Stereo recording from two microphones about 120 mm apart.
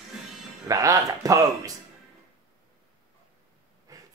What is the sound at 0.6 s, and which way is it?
Speech, 30° right (ahead or behind).